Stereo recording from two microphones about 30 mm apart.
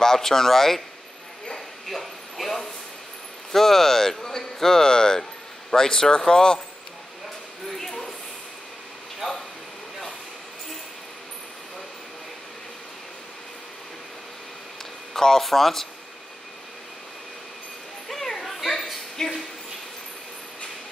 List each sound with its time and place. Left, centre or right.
0.0 s speech: centre
1.9 s vehicle: centre
3.5 s a man's voice: centre; by 6.6 s left
15.1 s speech: centre
18.0 s children playing: centre
18.4 s children playing: centre
19.1 s a woman's voice: centre